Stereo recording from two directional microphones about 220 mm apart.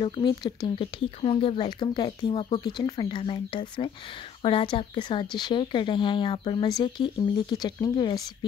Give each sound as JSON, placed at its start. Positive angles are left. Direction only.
{"t": 0.0, "sound": "speech", "side_deg": 20}